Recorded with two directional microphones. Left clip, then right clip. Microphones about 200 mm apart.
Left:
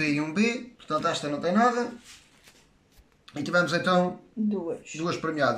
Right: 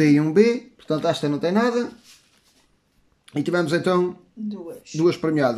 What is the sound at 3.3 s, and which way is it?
Speech, 40° right (ahead or behind).